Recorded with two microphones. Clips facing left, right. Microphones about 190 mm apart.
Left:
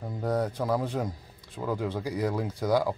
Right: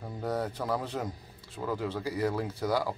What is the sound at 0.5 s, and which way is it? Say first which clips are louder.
Speech: left 4 dB; 10° left (ahead or behind).